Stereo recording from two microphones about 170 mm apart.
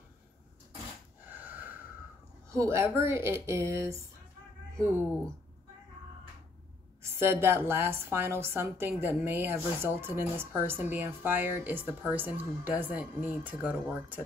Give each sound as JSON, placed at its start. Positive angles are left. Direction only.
{"t": 1.3, "sound": "wheeze", "side_deg": -10}
{"t": 2.5, "sound": "a woman's voice", "side_deg": -15}
{"t": 7.2, "sound": "a woman's voice", "side_deg": -15}